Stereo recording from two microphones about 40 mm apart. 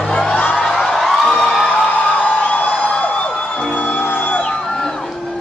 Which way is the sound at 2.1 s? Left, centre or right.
Left.